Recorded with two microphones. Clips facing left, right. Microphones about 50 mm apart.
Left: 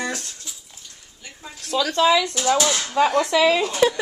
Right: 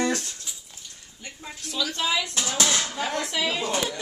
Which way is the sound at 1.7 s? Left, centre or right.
Left.